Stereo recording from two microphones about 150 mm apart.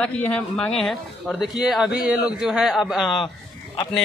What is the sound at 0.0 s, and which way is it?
A man's voice, 10° left (ahead or behind).